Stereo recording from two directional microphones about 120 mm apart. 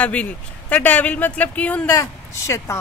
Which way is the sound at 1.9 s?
25° left (ahead or behind).